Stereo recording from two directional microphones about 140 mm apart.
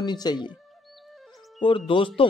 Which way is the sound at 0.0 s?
30° left (ahead or behind).